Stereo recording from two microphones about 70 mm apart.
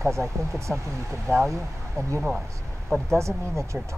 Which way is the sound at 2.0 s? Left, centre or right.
Right.